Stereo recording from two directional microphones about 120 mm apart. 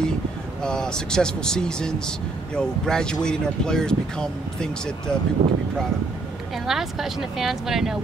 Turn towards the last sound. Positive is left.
turn(degrees=-5)  # may be behind; listen again after turning